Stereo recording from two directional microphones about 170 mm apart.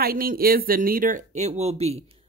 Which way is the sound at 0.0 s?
60° right (ahead or behind).